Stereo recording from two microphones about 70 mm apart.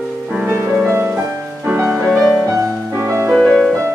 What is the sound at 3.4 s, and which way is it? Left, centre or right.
Music, centre.